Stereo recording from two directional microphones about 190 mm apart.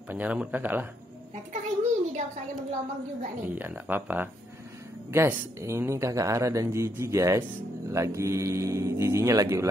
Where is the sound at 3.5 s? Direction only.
10° right (ahead or behind).